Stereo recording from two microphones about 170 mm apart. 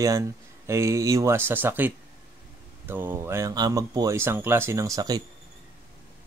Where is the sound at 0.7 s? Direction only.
15° right (ahead or behind).